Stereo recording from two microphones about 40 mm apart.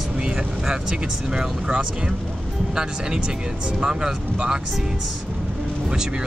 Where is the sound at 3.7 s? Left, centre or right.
Centre.